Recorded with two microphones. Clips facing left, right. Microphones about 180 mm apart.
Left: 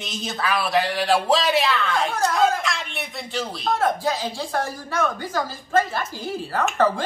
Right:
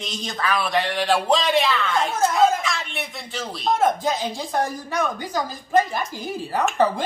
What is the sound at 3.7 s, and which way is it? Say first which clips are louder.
A woman's voice: right 1 dB; 20° right (ahead or behind).